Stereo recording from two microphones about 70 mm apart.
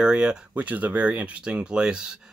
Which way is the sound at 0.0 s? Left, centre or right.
Centre.